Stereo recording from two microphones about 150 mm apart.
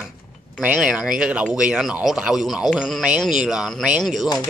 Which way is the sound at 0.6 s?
10° right (ahead or behind).